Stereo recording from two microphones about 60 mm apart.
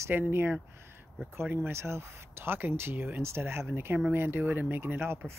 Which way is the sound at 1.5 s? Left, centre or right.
Right.